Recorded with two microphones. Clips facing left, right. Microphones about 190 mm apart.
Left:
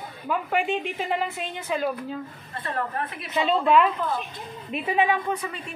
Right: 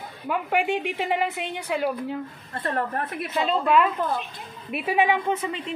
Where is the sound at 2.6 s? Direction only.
45° right (ahead or behind).